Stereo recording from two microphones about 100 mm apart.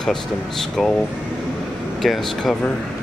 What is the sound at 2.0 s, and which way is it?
Speech, centre (ahead or behind).